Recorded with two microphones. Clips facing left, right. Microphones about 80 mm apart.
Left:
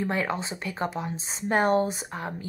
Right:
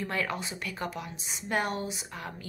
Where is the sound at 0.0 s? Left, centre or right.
Left.